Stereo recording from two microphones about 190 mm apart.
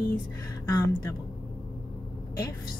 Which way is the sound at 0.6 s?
20° left (ahead or behind).